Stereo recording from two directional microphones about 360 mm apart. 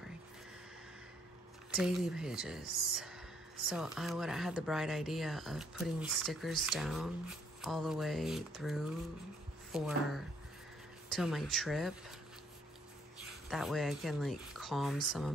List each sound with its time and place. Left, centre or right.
1.8 s speech: centre
13.2 s speech: centre